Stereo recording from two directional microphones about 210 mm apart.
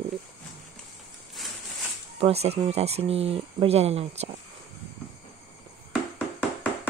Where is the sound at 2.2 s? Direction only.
30° right (ahead or behind).